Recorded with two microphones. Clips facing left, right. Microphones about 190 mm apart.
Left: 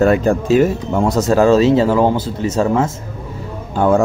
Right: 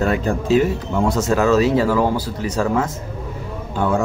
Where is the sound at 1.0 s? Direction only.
40° left (ahead or behind).